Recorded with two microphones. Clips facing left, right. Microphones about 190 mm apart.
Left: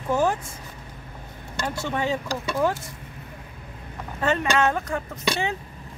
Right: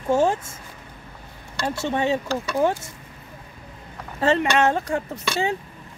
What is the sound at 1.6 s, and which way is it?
Speech, 25° right (ahead or behind).